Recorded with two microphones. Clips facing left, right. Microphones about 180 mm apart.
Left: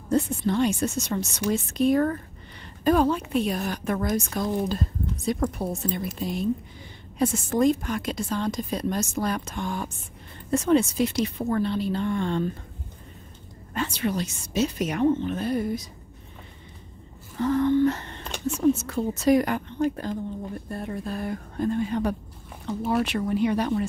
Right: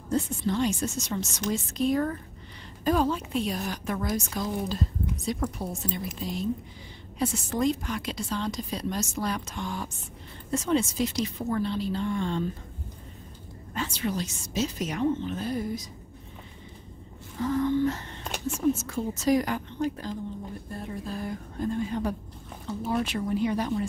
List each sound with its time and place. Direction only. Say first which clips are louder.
0.1 s a woman's voice: left 4 dB; 60° left (ahead or behind)
13.7 s a woman's voice: left 3 dB; 65° left (ahead or behind)
17.4 s a sound: left 4 dB; 65° left (ahead or behind)
18.8 s a woman's voice: left 4 dB; 65° left (ahead or behind)